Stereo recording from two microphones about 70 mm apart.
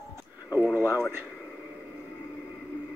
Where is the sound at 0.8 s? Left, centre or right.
Right.